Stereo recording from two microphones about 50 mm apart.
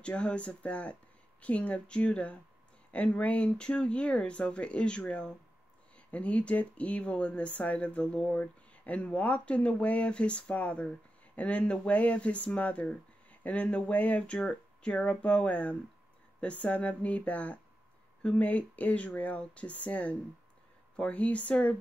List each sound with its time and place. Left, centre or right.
0.0 s speech: left